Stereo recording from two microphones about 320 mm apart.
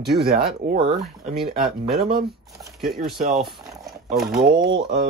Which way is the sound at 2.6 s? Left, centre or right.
Centre.